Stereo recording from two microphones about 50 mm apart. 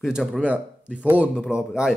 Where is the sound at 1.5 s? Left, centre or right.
Centre.